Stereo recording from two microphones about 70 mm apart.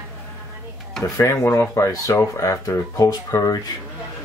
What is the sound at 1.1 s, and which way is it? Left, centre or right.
Speech, left.